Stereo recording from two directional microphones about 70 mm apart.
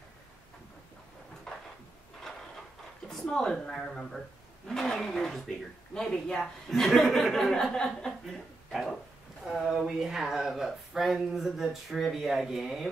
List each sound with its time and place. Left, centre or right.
3.1 s speech: centre
9.4 s speech: centre